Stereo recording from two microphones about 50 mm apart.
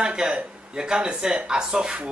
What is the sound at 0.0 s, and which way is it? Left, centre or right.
A man's voice, centre.